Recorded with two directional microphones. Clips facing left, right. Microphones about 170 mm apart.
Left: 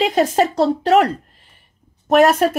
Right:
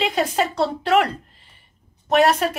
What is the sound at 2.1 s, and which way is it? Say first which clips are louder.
Speech: left 4 dB; 45° left (ahead or behind).